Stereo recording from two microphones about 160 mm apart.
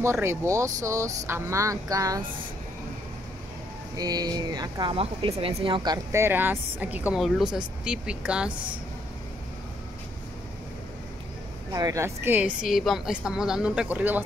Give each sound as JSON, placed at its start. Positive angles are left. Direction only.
{"t": 0.0, "sound": "speech", "side_deg": -15}
{"t": 3.9, "sound": "speech", "side_deg": -25}
{"t": 6.2, "sound": "speech", "side_deg": -10}
{"t": 11.7, "sound": "a woman's voice", "side_deg": -20}